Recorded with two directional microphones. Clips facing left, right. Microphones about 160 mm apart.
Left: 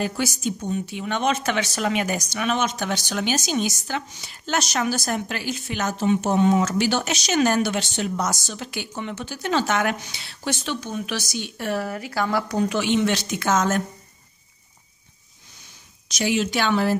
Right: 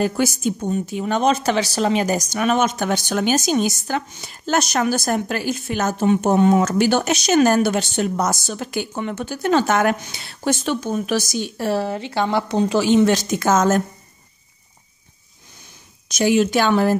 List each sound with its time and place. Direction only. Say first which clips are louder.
0.0 s speech: right 5 dB; 50° right (ahead or behind); by 12.7 s 25° right (ahead or behind)
12.7 s speech: right 8 dB; 40° right (ahead or behind)
16.1 s speech: right 6 dB; 50° right (ahead or behind)